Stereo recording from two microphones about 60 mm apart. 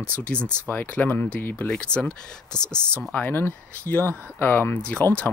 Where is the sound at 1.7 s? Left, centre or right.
Centre.